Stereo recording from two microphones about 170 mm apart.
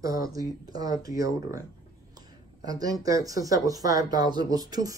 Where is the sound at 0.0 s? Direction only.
20° right (ahead or behind).